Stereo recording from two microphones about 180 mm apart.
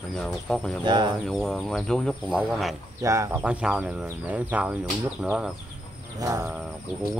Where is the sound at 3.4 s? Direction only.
5° right (ahead or behind).